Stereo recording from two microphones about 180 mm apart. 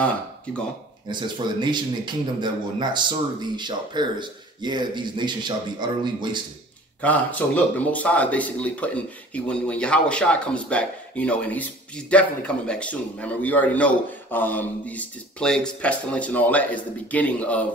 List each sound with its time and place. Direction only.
1.0 s speech: 25° right (ahead or behind)
7.0 s speech: 10° left (ahead or behind)